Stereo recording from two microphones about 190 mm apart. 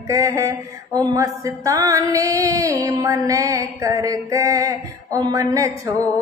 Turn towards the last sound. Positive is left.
turn(degrees=-15)  # may be behind; listen again after turning